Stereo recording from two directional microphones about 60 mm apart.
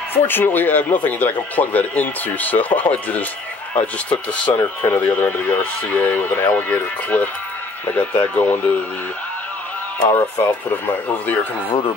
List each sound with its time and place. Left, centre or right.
0.1 s speech: left
10.0 s speech: left